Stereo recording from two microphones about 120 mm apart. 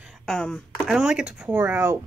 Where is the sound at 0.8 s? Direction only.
5° right (ahead or behind).